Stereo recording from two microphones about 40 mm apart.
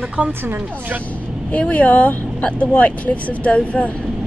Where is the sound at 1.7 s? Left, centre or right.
Left.